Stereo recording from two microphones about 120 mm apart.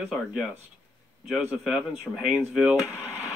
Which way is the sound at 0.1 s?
5° right (ahead or behind).